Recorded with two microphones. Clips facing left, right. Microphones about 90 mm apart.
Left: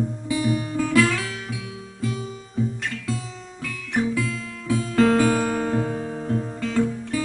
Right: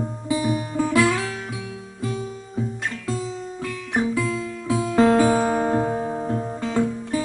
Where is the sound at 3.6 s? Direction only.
25° right (ahead or behind).